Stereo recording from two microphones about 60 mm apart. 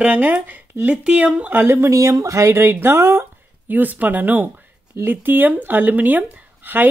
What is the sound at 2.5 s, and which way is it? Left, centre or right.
Speech, right.